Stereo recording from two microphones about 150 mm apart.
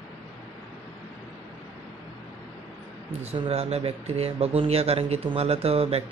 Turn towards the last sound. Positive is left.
turn(degrees=-40)  # may be behind; listen again after turning